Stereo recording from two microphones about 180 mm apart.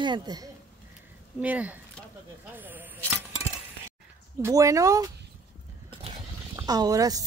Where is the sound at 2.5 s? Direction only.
10° right (ahead or behind).